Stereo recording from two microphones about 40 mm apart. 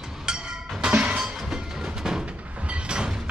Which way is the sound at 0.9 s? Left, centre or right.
Right.